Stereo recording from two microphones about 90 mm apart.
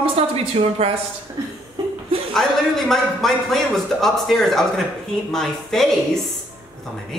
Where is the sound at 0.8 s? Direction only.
90° right.